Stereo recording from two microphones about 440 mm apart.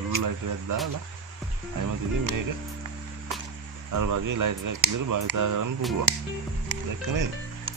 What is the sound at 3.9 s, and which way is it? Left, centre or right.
Speech, right.